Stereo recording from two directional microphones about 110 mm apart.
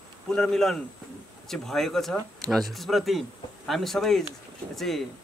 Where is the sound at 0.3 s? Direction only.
5° left (ahead or behind).